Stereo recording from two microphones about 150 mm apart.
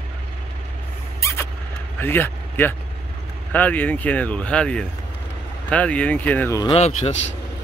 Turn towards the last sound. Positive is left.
turn(degrees=45)  # may be behind; listen again after turning